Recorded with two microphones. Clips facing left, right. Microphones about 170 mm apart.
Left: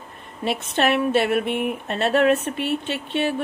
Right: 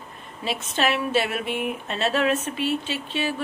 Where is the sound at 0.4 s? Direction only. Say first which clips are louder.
Left 3 dB; 55° left (ahead or behind).